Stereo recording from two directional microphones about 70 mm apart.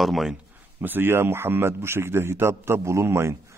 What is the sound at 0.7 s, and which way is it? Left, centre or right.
A man's voice, right.